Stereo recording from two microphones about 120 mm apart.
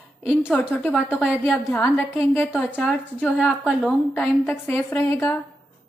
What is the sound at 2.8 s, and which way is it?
Speech, 5° left (ahead or behind).